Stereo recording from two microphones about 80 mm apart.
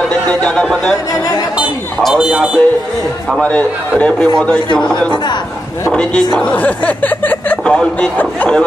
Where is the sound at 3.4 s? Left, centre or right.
Centre.